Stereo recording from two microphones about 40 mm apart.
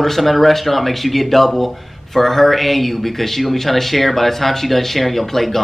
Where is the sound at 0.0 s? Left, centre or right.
Centre.